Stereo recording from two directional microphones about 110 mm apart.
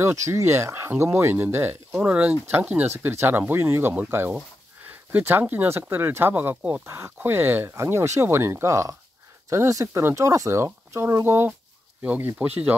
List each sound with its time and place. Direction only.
0.0 s speech: 25° right (ahead or behind)